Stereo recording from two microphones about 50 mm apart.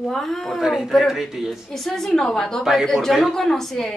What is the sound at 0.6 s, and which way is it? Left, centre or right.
Speech, centre.